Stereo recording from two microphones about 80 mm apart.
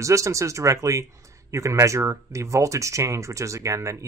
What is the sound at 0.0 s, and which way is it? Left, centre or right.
Speech, right.